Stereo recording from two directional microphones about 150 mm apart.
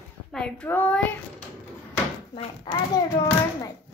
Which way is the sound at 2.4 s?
30° left (ahead or behind).